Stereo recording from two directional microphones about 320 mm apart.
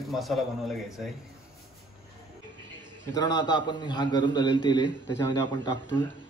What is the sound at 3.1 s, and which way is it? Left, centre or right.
A man's voice, centre.